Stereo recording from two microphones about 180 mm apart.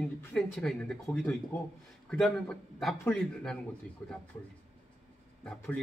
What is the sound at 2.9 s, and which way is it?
Speech, 15° left (ahead or behind).